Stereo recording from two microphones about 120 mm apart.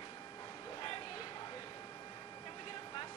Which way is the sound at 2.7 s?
45° left (ahead or behind).